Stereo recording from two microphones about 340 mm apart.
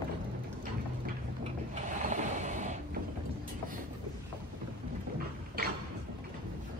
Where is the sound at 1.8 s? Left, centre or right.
Right.